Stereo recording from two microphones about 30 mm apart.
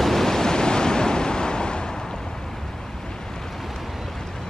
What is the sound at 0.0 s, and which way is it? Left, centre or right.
Waves, centre.